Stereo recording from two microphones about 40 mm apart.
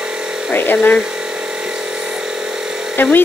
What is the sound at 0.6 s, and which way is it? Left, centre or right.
Speech, left.